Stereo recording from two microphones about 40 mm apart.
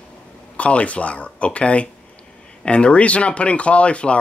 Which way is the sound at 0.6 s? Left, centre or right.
Left.